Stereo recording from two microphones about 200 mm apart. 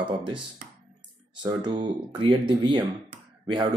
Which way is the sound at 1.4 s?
20° right (ahead or behind).